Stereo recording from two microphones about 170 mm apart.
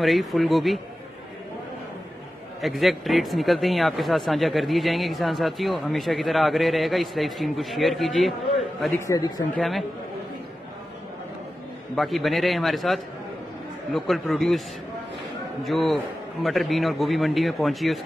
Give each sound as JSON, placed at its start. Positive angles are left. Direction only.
{"t": 0.0, "sound": "speech", "side_deg": 0}
{"t": 2.6, "sound": "speech", "side_deg": 0}
{"t": 8.9, "sound": "a man's voice", "side_deg": 20}
{"t": 9.6, "sound": "speech", "side_deg": 0}
{"t": 11.9, "sound": "speech", "side_deg": 0}
{"t": 15.6, "sound": "speech", "side_deg": 0}